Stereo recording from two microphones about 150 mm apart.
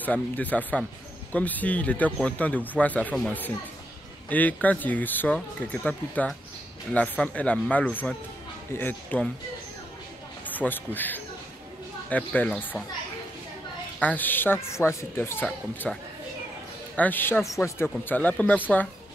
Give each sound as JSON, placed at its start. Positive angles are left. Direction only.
{"t": 0.0, "sound": "speech", "side_deg": 10}
{"t": 10.4, "sound": "speech", "side_deg": 10}
{"t": 13.9, "sound": "speech", "side_deg": 10}
{"t": 15.4, "sound": "speech", "side_deg": 5}